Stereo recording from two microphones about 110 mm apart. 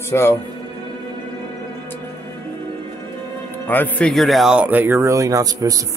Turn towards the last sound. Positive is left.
turn(degrees=-30)  # may be behind; listen again after turning